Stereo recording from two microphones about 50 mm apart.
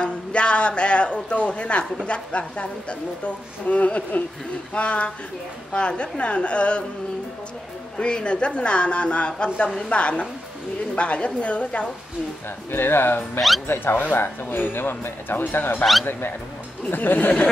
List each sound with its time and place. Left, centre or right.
0.0 s a man's voice: left
8.0 s a woman's voice: centre
12.7 s speech: left
15.8 s speech: centre
16.1 s speech: left